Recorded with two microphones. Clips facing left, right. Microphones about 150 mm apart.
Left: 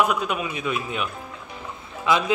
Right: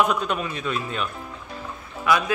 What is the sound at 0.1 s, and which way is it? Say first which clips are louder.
A man's voice: even; 10° left (ahead or behind).